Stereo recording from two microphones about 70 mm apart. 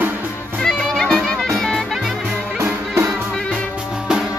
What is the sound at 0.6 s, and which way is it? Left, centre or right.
Music, centre.